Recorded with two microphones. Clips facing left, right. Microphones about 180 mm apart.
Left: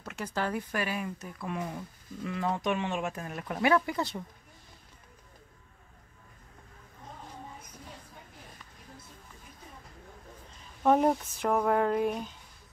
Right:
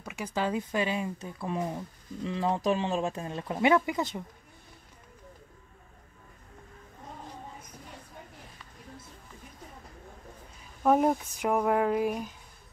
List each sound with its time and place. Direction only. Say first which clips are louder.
0.0 s speech: right 2 dB; 15° right (ahead or behind)
10.8 s speech: even; 5° right (ahead or behind)